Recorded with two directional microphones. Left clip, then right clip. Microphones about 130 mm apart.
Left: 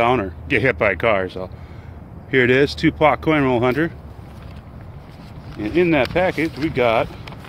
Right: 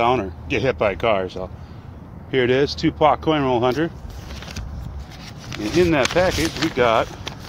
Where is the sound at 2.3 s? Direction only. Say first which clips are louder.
Left 3 dB; 55° left (ahead or behind).